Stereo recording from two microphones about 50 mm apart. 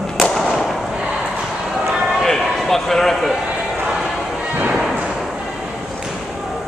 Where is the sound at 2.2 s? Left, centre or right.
Centre.